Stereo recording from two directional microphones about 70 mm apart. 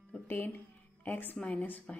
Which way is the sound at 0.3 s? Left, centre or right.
Left.